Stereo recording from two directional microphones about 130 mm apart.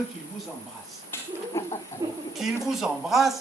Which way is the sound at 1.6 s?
20° left (ahead or behind).